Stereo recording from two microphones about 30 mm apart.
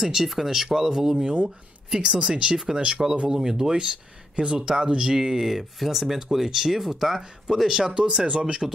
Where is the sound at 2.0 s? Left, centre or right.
Right.